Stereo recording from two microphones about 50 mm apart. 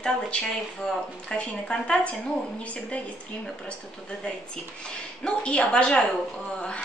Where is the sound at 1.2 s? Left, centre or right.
Centre.